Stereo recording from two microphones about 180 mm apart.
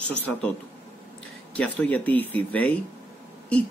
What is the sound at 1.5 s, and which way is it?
A man's voice, 5° left (ahead or behind).